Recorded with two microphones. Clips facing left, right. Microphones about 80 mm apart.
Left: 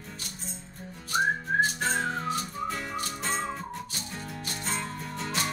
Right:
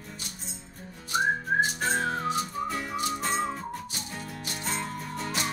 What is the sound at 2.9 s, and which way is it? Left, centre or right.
Music, centre.